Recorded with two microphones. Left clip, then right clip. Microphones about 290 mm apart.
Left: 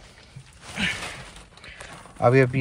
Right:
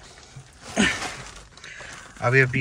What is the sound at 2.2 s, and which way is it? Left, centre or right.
Speech, centre.